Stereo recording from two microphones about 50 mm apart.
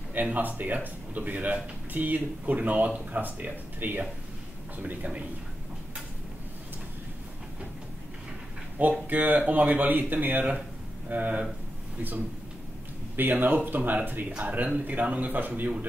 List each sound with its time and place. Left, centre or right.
0.1 s speech: right
8.8 s speech: right
13.1 s speech: right